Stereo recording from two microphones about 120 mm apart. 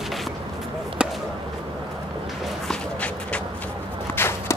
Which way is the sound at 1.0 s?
5° right (ahead or behind).